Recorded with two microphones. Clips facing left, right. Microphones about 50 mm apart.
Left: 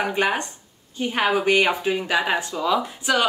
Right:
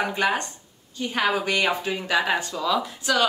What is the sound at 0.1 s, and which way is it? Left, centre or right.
Speech, left.